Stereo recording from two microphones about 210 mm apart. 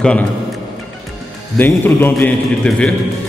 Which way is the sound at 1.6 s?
10° left (ahead or behind).